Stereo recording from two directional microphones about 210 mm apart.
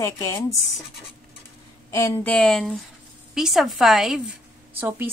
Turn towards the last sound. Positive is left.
turn(degrees=-10)  # may be behind; listen again after turning